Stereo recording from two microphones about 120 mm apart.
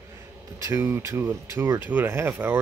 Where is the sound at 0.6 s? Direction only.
20° right (ahead or behind).